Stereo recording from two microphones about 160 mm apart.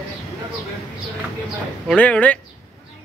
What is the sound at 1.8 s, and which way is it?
Speech, 5° left (ahead or behind).